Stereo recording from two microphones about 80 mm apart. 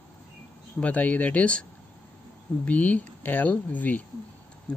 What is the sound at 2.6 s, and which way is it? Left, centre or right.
Speech, centre.